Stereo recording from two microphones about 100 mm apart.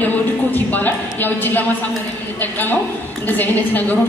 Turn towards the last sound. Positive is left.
turn(degrees=15)  # may be behind; listen again after turning